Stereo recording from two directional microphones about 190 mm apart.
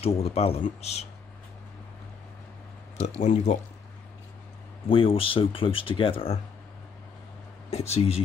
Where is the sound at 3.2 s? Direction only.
35° left (ahead or behind).